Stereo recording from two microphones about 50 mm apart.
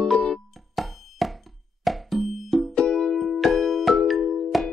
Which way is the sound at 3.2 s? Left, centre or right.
Centre.